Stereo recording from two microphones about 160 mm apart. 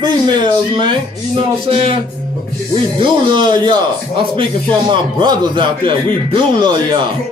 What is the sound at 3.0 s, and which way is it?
Speech, 30° right (ahead or behind).